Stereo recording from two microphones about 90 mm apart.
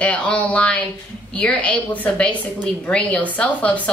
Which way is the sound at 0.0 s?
15° left (ahead or behind).